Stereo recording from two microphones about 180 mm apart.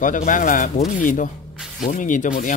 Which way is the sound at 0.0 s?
45° left (ahead or behind).